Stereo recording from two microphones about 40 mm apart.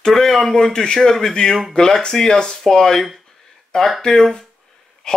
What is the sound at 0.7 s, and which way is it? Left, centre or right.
Speech, centre.